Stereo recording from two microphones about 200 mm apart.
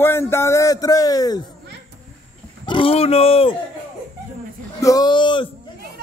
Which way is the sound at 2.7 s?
25° left (ahead or behind).